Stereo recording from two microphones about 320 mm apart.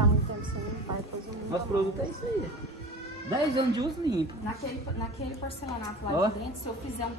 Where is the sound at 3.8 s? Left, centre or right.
Centre.